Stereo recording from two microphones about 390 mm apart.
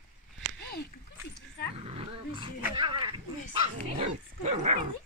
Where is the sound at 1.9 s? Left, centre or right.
Centre.